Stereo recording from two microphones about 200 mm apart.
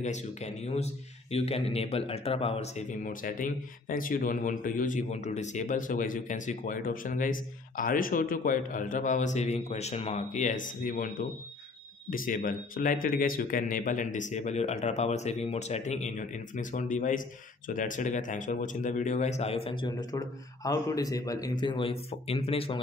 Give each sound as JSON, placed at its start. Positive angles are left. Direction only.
{"t": 0.0, "sound": "speech", "side_deg": 35}